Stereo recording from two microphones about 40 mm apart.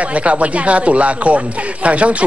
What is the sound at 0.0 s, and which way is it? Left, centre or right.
Speech, right.